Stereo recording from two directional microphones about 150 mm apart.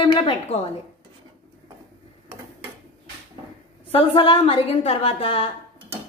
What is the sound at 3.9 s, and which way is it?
A woman's voice, 40° left (ahead or behind).